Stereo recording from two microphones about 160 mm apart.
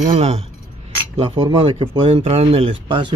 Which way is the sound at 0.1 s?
40° right (ahead or behind).